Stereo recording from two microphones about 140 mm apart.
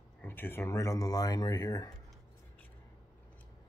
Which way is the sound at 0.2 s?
15° left (ahead or behind).